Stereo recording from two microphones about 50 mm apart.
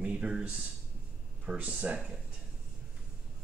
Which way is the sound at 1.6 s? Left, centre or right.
Right.